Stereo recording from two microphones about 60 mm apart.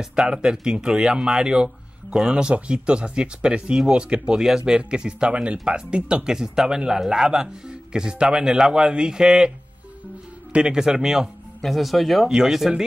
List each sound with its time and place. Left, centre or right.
0.0 s speech: centre
10.5 s speech: centre
11.6 s speech: centre